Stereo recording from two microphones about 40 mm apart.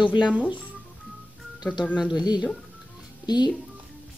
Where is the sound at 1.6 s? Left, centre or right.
Left.